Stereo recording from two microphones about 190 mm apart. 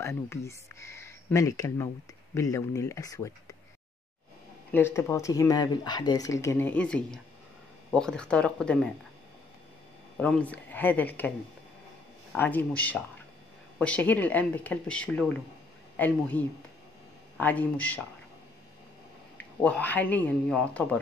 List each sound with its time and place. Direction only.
0.0 s speech: 15° left (ahead or behind)
4.7 s speech: 15° left (ahead or behind)
10.2 s speech: 5° left (ahead or behind)
19.3 s speech: 5° left (ahead or behind)